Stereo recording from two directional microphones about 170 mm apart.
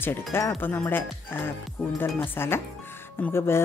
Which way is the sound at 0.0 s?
15° left (ahead or behind).